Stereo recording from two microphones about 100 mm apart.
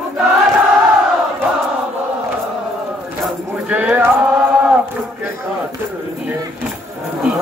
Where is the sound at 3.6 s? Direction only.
15° right (ahead or behind).